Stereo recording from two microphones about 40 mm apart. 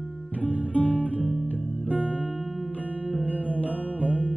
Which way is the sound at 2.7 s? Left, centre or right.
Left.